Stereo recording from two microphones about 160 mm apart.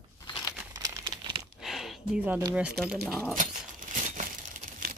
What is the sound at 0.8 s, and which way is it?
Crumpling, 30° right (ahead or behind).